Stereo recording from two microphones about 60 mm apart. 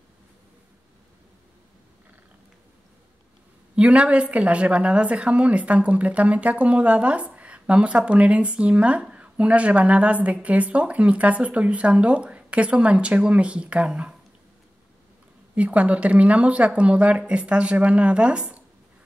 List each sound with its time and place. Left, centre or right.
3.7 s a woman's voice: centre
15.5 s a woman's voice: right